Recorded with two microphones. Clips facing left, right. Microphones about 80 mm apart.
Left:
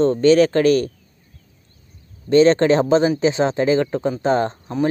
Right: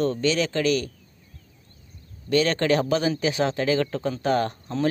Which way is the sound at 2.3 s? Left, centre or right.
Left.